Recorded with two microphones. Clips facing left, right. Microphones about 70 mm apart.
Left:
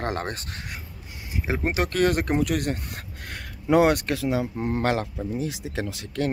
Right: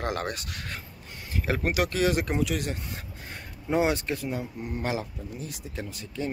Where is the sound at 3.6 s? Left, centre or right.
Left.